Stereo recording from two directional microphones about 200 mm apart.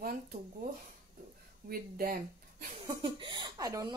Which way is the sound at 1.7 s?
50° right (ahead or behind).